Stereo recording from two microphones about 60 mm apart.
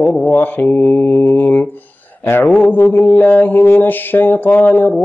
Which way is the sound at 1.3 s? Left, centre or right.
Left.